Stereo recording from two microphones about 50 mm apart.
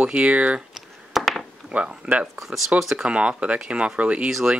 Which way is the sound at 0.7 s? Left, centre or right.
Centre.